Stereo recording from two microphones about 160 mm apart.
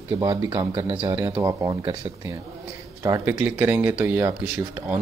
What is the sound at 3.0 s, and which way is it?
Speech, 20° right (ahead or behind).